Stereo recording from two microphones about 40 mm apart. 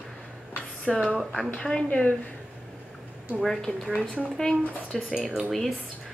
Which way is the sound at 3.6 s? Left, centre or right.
Centre.